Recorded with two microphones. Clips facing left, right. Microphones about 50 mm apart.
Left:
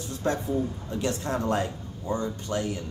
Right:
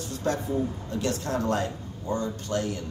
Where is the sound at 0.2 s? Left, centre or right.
Left.